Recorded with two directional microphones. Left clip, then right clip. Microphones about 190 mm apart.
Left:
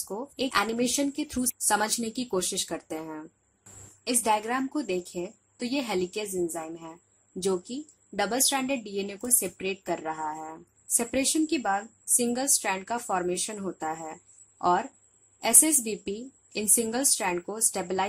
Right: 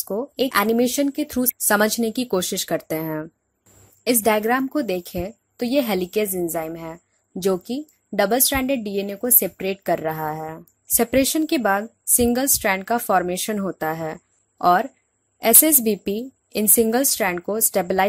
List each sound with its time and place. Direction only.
0.1 s a woman's voice: 35° right (ahead or behind)